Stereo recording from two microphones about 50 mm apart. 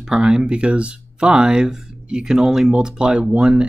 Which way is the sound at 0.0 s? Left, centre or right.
Centre.